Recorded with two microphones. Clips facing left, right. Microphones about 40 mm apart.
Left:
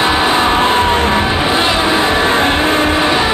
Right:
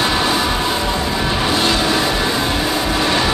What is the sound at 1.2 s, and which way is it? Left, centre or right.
Music, left.